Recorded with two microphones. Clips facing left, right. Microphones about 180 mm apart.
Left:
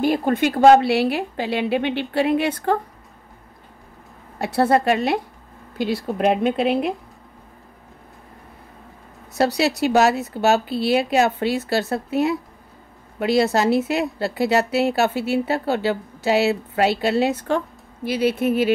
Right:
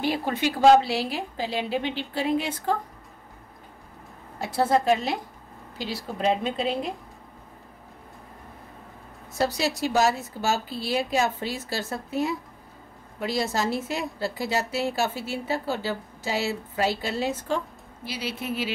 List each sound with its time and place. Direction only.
0.0 s a woman's voice: 50° left (ahead or behind)
4.4 s a woman's voice: 65° left (ahead or behind)
9.3 s a woman's voice: 70° left (ahead or behind)
18.0 s speech: 55° left (ahead or behind)